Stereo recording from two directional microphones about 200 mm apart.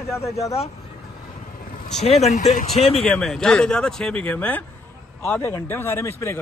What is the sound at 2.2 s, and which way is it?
Speech, 35° left (ahead or behind).